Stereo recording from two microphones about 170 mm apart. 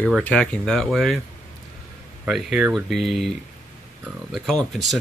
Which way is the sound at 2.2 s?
5° right (ahead or behind).